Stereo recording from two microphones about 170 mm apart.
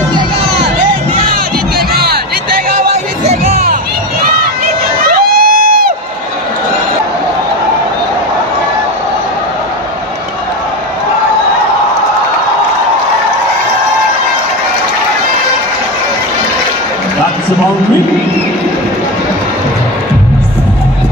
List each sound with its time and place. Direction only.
3.3 s music: 40° right (ahead or behind)
5.1 s music: 55° right (ahead or behind)